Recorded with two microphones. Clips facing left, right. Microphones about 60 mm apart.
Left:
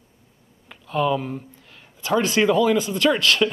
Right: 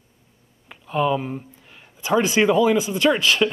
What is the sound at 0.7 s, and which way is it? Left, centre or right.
Speech, centre.